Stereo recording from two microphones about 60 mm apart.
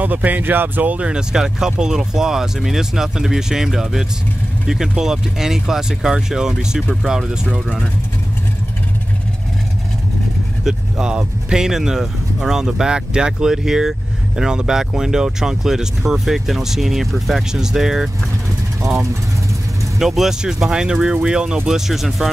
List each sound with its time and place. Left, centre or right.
0.0 s speech: right
10.6 s speech: centre
20.0 s speech: centre